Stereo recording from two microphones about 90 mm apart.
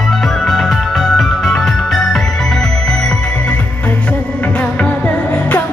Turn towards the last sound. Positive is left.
turn(degrees=15)  # may be behind; listen again after turning